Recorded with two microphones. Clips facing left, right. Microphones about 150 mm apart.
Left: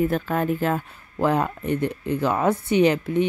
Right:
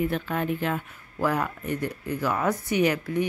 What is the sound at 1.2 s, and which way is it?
Speech, 25° left (ahead or behind).